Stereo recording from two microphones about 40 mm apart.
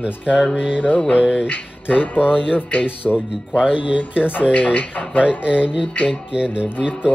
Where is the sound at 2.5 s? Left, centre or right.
Left.